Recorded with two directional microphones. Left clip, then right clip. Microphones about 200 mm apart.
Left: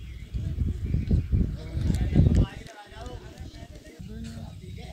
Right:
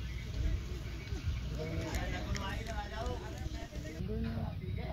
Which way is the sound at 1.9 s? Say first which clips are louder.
Left 11 dB; 35° right (ahead or behind).